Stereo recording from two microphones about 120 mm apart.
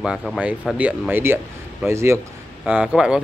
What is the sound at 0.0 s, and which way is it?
Speech, centre (ahead or behind).